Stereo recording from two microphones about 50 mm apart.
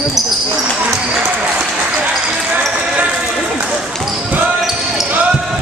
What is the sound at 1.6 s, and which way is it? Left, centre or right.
Basketball bounce, centre.